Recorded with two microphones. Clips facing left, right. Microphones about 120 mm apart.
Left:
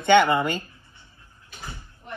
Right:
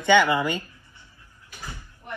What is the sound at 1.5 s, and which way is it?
Door, 20° left (ahead or behind).